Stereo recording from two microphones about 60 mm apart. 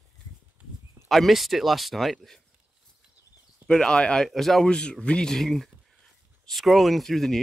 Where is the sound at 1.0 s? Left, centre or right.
Centre.